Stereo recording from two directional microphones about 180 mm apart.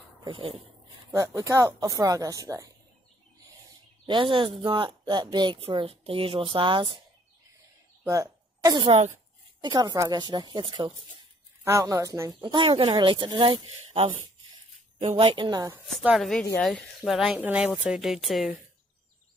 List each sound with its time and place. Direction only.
0.2 s speech: 30° right (ahead or behind)
1.1 s speech: 15° right (ahead or behind)
4.0 s speech: 25° right (ahead or behind)
8.0 s a sound: 15° right (ahead or behind)
9.6 s a woman's voice: 25° right (ahead or behind)
15.9 s speech: centre (ahead or behind)